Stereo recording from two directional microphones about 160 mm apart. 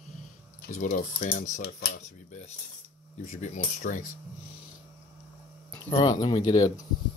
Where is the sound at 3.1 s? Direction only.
55° left (ahead or behind).